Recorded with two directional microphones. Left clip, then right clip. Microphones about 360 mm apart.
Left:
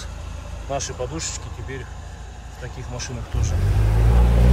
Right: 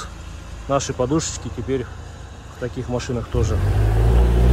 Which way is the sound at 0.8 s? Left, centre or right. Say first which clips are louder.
Right 7 dB; centre.